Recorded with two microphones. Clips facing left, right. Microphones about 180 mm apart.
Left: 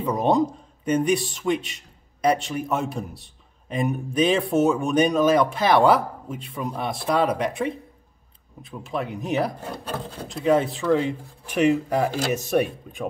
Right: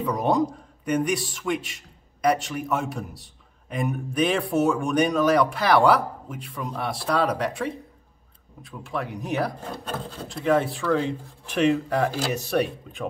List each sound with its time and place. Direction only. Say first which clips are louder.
0.0 s a man's voice: left 2 dB; 25° left (ahead or behind)